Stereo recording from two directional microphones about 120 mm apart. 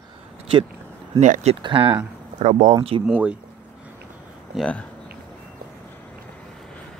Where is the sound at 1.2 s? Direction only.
75° right (ahead or behind).